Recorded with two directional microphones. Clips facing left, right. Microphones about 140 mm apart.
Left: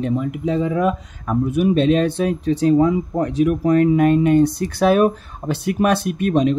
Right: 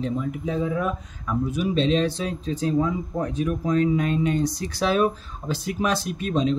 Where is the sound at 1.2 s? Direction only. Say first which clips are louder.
Left 7 dB; 55° left (ahead or behind).